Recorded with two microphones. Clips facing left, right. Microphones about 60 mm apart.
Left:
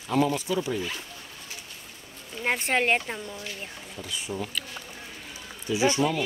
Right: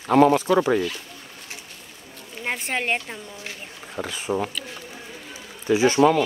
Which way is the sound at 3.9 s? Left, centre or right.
Right.